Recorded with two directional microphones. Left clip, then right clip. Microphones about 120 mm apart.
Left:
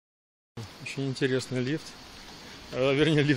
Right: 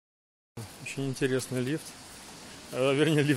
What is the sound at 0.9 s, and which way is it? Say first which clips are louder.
Speech: left 1 dB; 15° left (ahead or behind).